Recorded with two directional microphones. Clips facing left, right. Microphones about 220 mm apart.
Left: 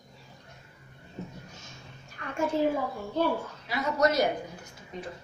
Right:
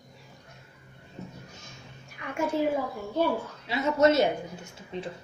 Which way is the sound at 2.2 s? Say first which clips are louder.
Right 1 dB; 10° right (ahead or behind).